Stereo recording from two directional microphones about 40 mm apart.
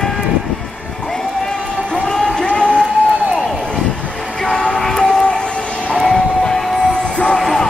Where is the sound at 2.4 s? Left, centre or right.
Left.